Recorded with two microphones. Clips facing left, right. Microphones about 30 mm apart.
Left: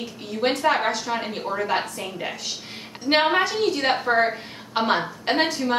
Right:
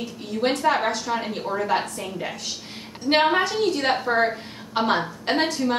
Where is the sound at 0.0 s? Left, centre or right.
Centre.